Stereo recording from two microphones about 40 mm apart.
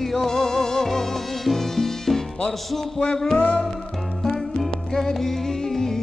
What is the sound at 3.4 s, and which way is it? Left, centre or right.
Music, left.